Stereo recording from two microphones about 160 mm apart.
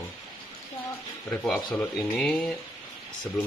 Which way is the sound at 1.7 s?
5° left (ahead or behind).